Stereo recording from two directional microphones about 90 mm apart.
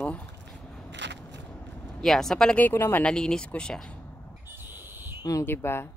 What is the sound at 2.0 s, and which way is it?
Speech, 5° left (ahead or behind).